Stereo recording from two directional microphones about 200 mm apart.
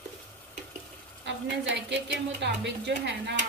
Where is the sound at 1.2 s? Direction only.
60° right (ahead or behind).